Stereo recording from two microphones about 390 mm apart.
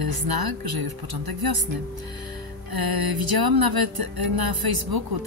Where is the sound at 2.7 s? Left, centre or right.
Right.